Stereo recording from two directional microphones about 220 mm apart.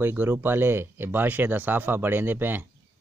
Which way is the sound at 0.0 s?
10° right (ahead or behind).